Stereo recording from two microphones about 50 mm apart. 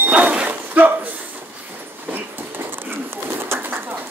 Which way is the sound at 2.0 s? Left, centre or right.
Right.